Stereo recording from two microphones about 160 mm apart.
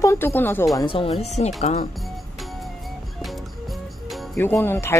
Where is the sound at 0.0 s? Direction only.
15° left (ahead or behind).